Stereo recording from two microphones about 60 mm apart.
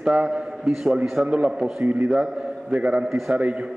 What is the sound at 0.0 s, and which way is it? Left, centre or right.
A man's voice, centre.